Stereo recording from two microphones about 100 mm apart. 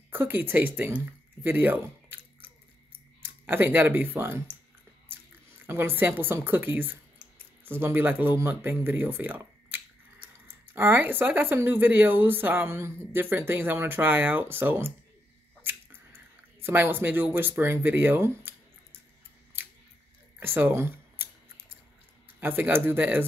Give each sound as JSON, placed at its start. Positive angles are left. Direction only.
{"t": 0.1, "sound": "speech", "side_deg": -20}
{"t": 5.7, "sound": "speech", "side_deg": -25}
{"t": 16.6, "sound": "speech", "side_deg": -20}
{"t": 20.3, "sound": "a sound", "side_deg": -20}
{"t": 22.4, "sound": "speech", "side_deg": -20}